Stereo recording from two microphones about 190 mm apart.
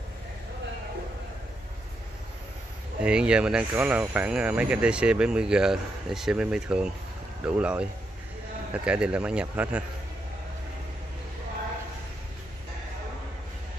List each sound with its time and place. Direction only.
3.0 s speech: 5° right (ahead or behind)